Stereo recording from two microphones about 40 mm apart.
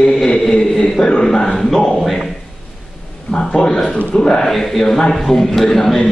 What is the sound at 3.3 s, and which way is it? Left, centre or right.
A man's voice, left.